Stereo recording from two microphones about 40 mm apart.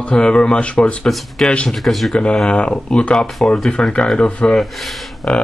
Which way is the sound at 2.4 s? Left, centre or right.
Left.